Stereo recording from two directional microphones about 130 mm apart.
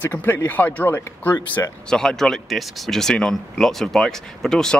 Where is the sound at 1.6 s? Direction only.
25° left (ahead or behind).